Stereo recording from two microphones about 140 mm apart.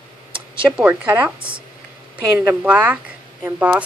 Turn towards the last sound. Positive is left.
turn(degrees=-10)  # may be behind; listen again after turning